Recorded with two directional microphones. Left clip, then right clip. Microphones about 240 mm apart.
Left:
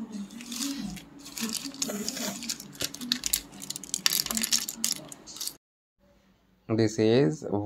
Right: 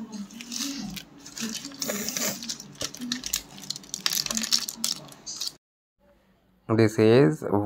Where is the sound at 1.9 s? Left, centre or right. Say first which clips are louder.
Right 4 dB; right.